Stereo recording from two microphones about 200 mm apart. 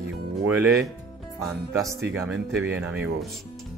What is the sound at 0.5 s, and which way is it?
Speech, 10° right (ahead or behind).